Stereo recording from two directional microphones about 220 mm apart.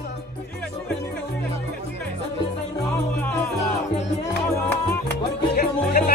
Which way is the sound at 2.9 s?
10° left (ahead or behind).